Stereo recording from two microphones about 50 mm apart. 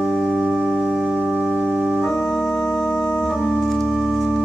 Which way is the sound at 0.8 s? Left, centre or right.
Centre.